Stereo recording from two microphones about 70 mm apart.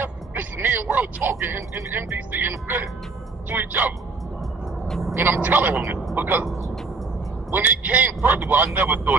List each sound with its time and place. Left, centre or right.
0.0 s a man's voice: right
4.8 s vehicle: centre
5.1 s speech: right
7.5 s speech: right